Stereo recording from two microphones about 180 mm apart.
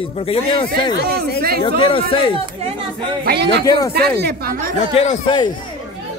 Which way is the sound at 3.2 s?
65° right (ahead or behind).